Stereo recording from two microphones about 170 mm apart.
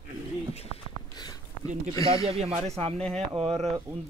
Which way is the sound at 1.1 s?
25° left (ahead or behind).